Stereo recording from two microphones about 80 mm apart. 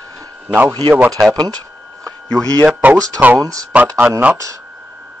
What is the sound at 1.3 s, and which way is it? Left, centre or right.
Speech, right.